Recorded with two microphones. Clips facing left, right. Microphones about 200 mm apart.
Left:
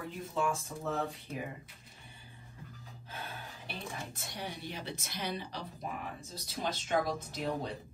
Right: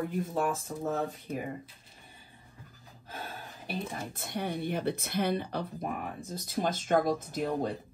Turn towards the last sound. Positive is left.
turn(degrees=-50)  # may be behind; listen again after turning